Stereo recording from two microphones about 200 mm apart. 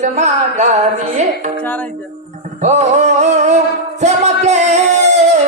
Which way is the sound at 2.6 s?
35° right (ahead or behind).